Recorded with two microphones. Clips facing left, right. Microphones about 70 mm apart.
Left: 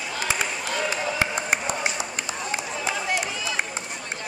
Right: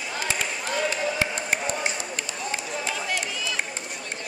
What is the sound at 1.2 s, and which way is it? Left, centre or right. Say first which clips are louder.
Run: left 2 dB; centre.